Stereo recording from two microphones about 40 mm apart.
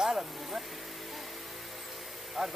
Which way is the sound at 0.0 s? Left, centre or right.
Centre.